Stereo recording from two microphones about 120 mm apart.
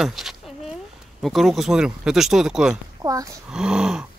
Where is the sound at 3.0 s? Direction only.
30° right (ahead or behind).